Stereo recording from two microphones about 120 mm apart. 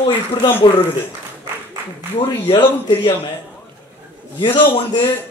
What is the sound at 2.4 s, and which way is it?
Speech, 50° left (ahead or behind).